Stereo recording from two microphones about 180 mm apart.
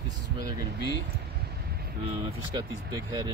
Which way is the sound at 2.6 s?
20° right (ahead or behind).